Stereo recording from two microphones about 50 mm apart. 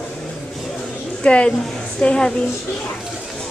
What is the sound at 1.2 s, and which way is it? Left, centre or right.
A woman's voice, left.